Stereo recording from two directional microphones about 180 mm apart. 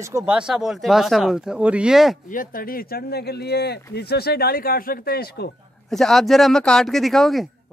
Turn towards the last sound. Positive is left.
turn(degrees=0)  # may be behind; listen again after turning